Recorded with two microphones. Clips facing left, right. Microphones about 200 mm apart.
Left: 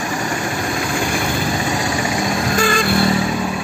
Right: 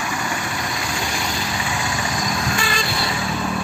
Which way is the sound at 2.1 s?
45° left (ahead or behind).